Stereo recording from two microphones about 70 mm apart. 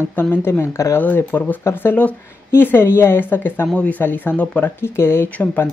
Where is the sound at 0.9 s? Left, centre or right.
Left.